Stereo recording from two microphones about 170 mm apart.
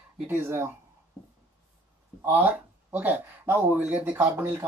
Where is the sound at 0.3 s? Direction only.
15° right (ahead or behind).